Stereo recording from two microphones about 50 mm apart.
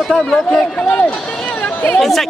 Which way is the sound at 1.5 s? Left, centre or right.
Left.